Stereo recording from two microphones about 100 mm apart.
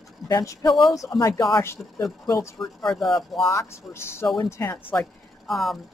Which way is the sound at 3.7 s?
25° left (ahead or behind).